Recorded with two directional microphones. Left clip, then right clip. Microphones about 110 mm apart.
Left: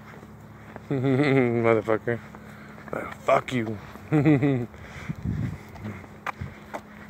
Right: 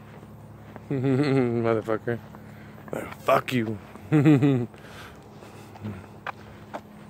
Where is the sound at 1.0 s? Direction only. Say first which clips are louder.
Left 2 dB; 20° right (ahead or behind).